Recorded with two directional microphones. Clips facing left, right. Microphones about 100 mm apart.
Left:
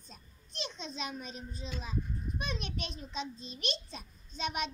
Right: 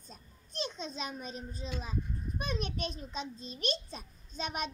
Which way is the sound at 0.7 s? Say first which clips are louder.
Right 1 dB; 45° right (ahead or behind).